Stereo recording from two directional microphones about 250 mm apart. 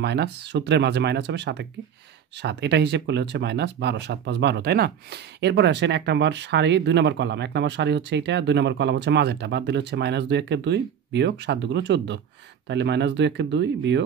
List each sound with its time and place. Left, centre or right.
0.0 s speech: right